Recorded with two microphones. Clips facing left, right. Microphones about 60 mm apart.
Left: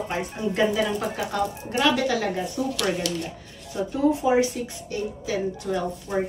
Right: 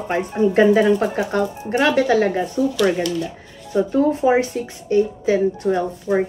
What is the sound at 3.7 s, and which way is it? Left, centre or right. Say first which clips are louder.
Speech: right 5 dB; right.